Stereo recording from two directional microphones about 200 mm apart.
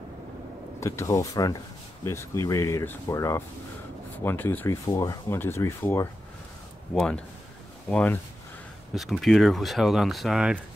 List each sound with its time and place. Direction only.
0.7 s speech: 15° left (ahead or behind)
7.9 s speech: 5° left (ahead or behind)